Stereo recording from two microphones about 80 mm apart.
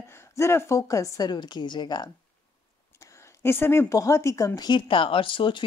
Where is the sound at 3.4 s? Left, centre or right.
Left.